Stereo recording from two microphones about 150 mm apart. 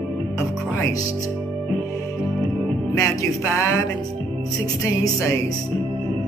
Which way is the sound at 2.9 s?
20° left (ahead or behind).